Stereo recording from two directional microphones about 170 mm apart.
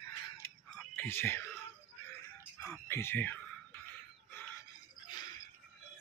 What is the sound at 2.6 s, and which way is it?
Speech, 15° left (ahead or behind).